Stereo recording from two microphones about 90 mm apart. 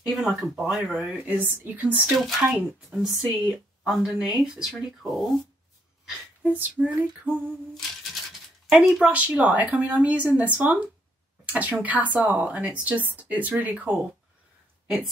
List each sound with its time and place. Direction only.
0.0 s a woman's voice: 5° right (ahead or behind)
2.1 s speech: centre (ahead or behind)
6.5 s speech: 20° right (ahead or behind)
8.6 s a woman's voice: 10° right (ahead or behind)